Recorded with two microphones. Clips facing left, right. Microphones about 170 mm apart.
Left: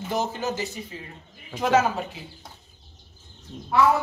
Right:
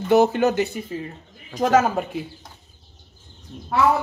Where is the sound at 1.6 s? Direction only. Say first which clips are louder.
Right 3 dB; 45° right (ahead or behind).